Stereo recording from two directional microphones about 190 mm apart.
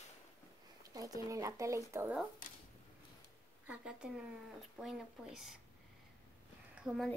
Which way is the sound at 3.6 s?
5° right (ahead or behind).